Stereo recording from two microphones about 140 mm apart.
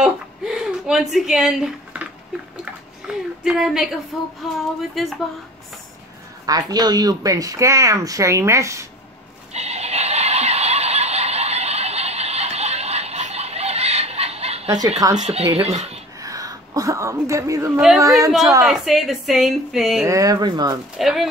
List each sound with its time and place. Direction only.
0.0 s a sound: 5° right (ahead or behind)
2.6 s speech: 5° right (ahead or behind)
6.4 s speech: 30° right (ahead or behind)
9.5 s a sound: 50° right (ahead or behind)
15.1 s speech: 50° right (ahead or behind)
16.2 s speech: 25° right (ahead or behind)
17.7 s a woman's voice: centre (ahead or behind)
20.1 s speech: 25° right (ahead or behind)
21.0 s a woman's voice: centre (ahead or behind)